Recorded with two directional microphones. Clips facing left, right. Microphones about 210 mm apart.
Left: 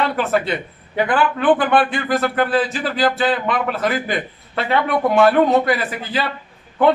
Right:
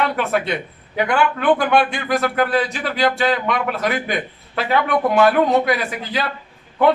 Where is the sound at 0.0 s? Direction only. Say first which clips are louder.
Left 1 dB; centre (ahead or behind).